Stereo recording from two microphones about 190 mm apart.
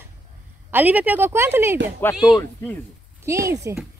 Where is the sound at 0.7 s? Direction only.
10° right (ahead or behind).